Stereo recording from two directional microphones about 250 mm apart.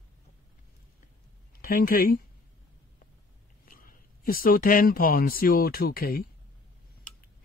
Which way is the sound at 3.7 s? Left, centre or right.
Left.